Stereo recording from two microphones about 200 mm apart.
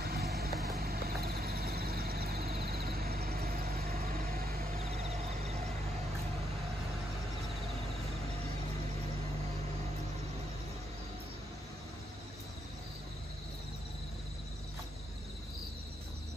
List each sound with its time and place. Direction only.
0.0 s vehicle: 50° right (ahead or behind); by 5.6 s 35° right (ahead or behind)